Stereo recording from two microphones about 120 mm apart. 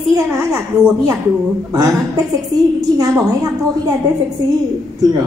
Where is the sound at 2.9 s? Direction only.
30° right (ahead or behind).